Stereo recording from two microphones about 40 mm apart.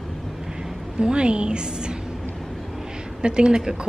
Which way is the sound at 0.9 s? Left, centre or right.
Right.